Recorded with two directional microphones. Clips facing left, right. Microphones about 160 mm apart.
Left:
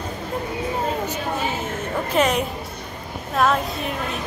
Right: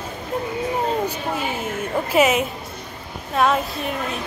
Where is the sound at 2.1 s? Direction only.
5° right (ahead or behind).